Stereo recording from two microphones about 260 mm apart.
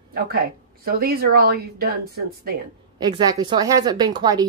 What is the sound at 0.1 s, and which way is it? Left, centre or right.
A woman's voice, right.